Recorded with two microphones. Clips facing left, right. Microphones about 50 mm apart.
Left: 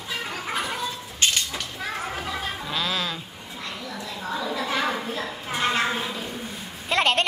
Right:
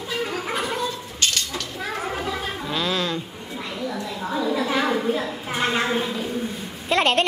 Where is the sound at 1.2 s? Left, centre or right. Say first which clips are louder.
Left 1 dB; left.